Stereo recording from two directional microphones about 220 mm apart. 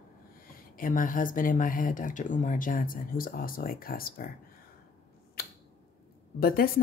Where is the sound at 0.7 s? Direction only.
40° left (ahead or behind).